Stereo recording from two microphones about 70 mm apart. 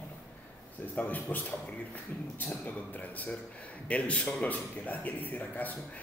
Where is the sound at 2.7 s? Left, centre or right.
Left.